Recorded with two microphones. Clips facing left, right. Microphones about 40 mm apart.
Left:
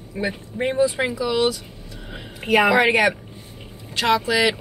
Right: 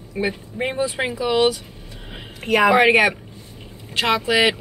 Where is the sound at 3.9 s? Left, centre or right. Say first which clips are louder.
Right 1 dB; right.